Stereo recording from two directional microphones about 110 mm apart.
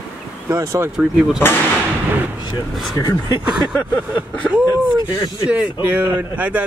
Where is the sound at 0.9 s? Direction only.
5° right (ahead or behind).